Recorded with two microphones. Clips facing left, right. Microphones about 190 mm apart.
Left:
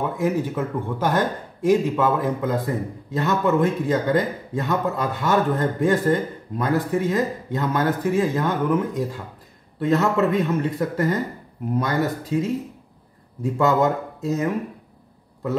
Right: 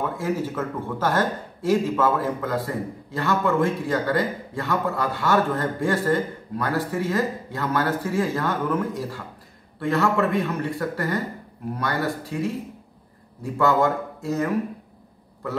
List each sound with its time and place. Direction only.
0.2 s speech: 15° left (ahead or behind)